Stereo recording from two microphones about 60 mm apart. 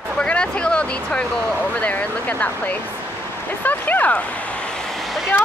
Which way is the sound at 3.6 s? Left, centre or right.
Left.